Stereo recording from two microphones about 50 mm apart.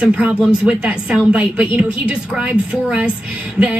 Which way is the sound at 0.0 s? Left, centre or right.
Right.